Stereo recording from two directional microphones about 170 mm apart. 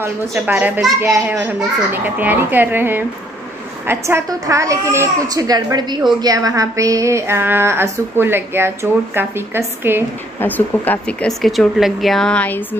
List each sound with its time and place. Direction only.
0.0 s speech: 10° right (ahead or behind)
10.4 s speech: 10° left (ahead or behind)